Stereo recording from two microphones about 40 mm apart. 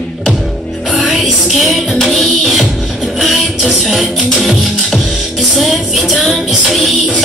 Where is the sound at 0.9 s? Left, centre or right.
Centre.